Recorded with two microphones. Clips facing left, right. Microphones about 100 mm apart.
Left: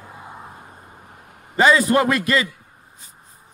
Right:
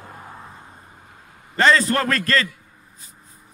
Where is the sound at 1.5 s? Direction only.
10° left (ahead or behind).